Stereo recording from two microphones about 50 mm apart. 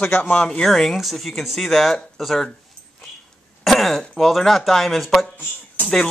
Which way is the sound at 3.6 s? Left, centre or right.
Centre.